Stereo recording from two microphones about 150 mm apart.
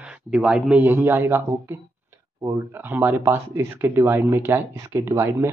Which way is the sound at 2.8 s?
15° right (ahead or behind).